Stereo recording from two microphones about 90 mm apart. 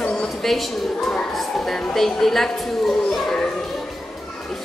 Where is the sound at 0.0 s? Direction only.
5° left (ahead or behind).